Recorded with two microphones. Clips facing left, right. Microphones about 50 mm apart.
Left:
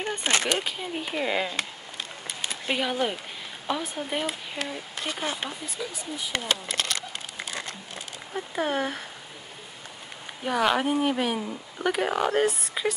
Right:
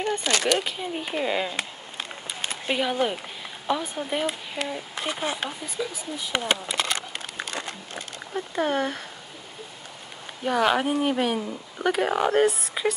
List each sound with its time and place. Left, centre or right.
0.2 s speech: left
0.7 s speech: centre
2.7 s speech: centre
5.0 s speech: centre
5.4 s speech: centre
6.4 s speech: centre
8.3 s speech: centre
10.4 s speech: centre